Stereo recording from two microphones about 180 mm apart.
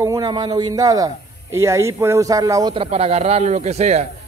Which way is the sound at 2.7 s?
30° right (ahead or behind).